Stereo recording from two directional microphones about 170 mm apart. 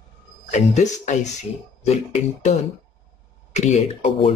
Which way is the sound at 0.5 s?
45° left (ahead or behind).